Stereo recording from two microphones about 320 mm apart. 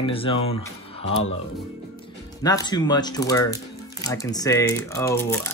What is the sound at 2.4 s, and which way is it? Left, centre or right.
Speech, centre.